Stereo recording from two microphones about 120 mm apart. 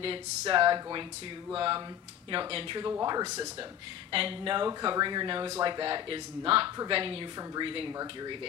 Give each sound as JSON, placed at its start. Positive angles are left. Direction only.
{"t": 0.5, "sound": "speech", "side_deg": -40}
{"t": 2.3, "sound": "speech", "side_deg": -40}
{"t": 2.9, "sound": "speech", "side_deg": -30}
{"t": 4.1, "sound": "speech", "side_deg": -45}
{"t": 8.0, "sound": "speech", "side_deg": -35}